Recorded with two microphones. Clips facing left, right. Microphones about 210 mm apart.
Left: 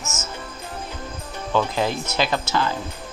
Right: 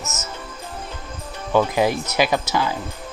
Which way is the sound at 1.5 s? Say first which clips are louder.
Right 4 dB; 15° right (ahead or behind).